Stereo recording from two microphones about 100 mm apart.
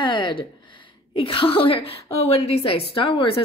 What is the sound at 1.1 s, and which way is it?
A woman's voice, 65° left (ahead or behind).